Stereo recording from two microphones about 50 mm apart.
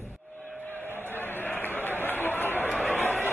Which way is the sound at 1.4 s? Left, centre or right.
Left.